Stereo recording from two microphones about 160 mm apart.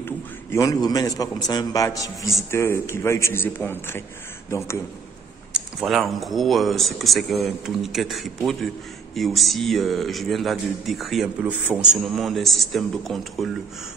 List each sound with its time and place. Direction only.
0.0 s a man's voice: 20° left (ahead or behind)
5.5 s a man's voice: 5° right (ahead or behind)